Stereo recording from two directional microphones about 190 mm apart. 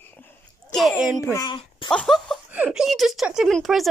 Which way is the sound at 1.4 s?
25° left (ahead or behind).